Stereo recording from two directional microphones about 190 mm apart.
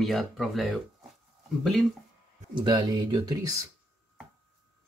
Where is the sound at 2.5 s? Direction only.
25° right (ahead or behind).